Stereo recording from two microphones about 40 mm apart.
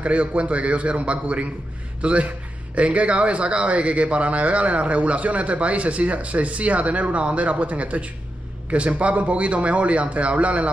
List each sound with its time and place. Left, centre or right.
0.0 s speech: right